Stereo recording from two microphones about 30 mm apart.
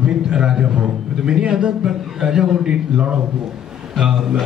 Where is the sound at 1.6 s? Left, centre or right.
Right.